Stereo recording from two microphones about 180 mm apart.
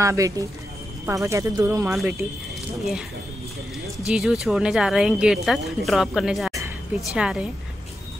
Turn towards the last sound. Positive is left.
turn(degrees=-5)  # may be behind; listen again after turning